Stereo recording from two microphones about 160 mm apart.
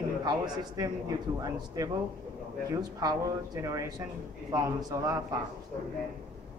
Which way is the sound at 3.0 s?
20° right (ahead or behind).